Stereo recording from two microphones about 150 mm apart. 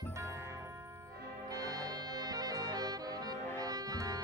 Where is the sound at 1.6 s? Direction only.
25° right (ahead or behind).